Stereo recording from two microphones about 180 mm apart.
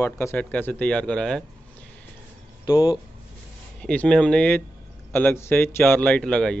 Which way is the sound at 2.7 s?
25° left (ahead or behind).